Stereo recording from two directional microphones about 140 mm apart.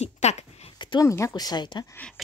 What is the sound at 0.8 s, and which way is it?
Speech, 30° left (ahead or behind).